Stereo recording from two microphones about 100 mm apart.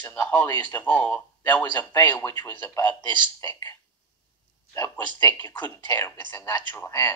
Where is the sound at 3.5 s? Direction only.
35° left (ahead or behind).